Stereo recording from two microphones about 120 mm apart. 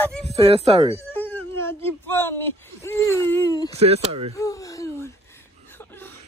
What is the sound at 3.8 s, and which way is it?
Speech, 60° right (ahead or behind).